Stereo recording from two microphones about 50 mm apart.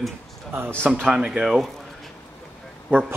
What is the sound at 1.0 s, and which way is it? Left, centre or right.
Speech, centre.